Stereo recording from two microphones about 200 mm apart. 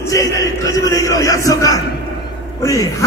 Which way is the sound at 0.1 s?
15° left (ahead or behind).